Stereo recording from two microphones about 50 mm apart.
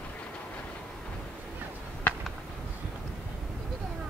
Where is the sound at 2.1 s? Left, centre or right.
Left.